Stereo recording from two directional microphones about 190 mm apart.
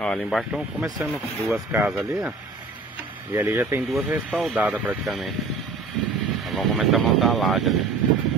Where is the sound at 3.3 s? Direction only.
15° right (ahead or behind).